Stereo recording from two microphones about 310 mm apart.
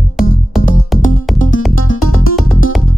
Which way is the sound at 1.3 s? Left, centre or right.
Left.